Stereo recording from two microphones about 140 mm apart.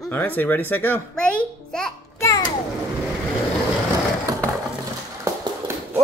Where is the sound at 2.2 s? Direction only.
25° left (ahead or behind).